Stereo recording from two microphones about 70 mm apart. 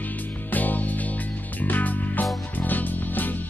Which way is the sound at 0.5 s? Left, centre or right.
Left.